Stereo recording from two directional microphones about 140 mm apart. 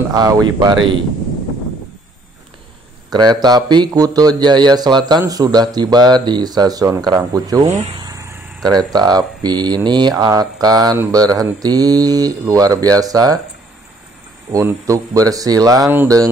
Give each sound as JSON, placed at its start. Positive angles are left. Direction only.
{"t": 0.2, "sound": "speech", "side_deg": -30}
{"t": 3.1, "sound": "speech", "side_deg": -30}
{"t": 7.6, "sound": "speech", "side_deg": -55}
{"t": 8.0, "sound": "vehicle", "side_deg": -25}
{"t": 8.6, "sound": "speech", "side_deg": -30}
{"t": 14.5, "sound": "speech", "side_deg": -20}